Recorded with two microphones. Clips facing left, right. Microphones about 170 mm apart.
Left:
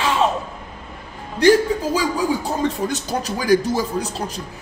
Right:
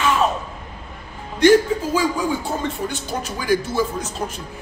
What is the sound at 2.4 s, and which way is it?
Speech, 40° left (ahead or behind).